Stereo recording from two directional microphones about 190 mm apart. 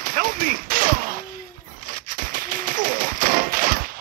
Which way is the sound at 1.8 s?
45° right (ahead or behind).